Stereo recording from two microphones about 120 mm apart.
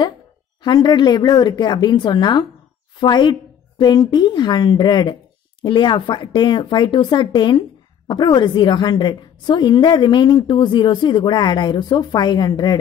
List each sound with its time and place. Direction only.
0.6 s a woman's voice: 35° left (ahead or behind)